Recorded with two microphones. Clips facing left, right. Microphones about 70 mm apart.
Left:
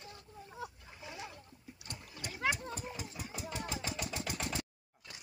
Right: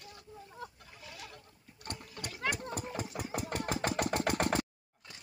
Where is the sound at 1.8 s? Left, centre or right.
Right.